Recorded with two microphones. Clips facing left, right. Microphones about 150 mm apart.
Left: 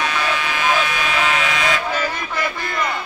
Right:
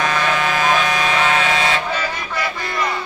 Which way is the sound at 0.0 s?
45° right (ahead or behind).